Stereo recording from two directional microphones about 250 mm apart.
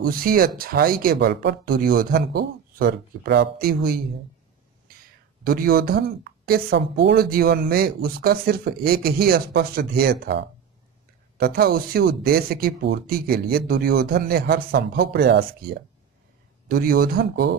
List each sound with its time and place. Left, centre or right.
0.0 s speech: right
5.4 s speech: right